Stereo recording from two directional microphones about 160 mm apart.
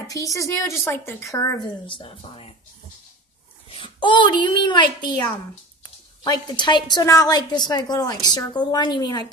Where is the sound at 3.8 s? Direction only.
30° left (ahead or behind).